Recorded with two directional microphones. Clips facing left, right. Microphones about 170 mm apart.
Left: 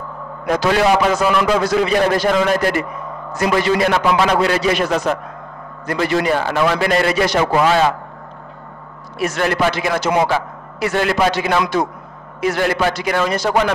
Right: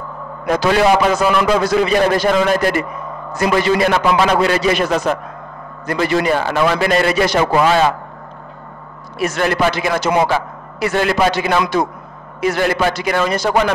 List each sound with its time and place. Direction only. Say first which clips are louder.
0.7 s a man's voice: right 2 dB; 15° right (ahead or behind)
9.2 s a man's voice: right 1 dB; 10° right (ahead or behind)